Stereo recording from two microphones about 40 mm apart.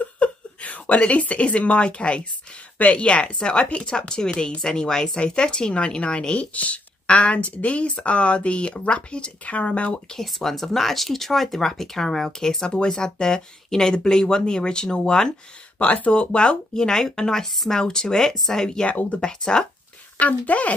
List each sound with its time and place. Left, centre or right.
0.0 s a sound: left
2.8 s speech: left
6.5 s speech: left
10.2 s speech: centre
15.8 s speech: left; by 17.5 s centre
17.5 s speech: centre
17.7 s speech: centre
19.0 s speech: left
20.2 s speech: left